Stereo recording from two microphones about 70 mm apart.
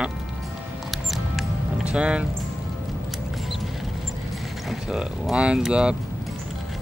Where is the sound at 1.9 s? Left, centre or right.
Centre.